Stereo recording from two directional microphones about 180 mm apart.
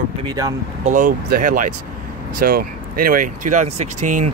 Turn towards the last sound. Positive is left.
turn(degrees=-45)  # may be behind; listen again after turning